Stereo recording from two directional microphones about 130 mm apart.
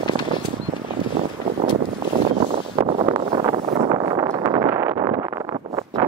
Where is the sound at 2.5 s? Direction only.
45° right (ahead or behind).